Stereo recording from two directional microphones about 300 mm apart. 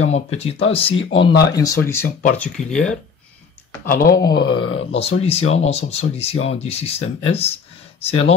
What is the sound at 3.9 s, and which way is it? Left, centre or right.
Speech, left.